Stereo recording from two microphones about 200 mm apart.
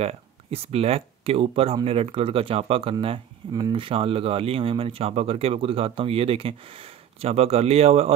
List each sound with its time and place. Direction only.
0.0 s speech: 30° right (ahead or behind)